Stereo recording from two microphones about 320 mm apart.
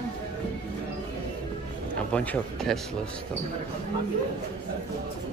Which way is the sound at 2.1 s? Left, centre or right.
Centre.